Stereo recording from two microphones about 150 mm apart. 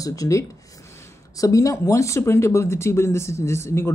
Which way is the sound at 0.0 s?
20° left (ahead or behind).